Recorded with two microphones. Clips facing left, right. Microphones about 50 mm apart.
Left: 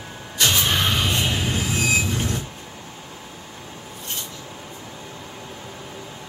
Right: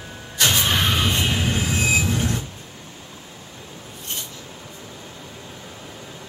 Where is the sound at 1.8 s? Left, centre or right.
Right.